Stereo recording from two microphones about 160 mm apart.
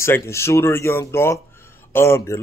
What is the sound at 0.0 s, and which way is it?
Speech, 15° left (ahead or behind).